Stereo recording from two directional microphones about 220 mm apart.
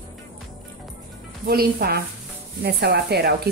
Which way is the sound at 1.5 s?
45° right (ahead or behind).